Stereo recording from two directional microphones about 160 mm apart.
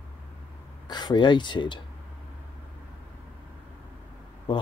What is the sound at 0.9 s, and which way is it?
Speech, 25° left (ahead or behind).